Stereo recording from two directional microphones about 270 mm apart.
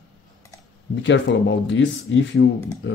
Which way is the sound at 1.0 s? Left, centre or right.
Left.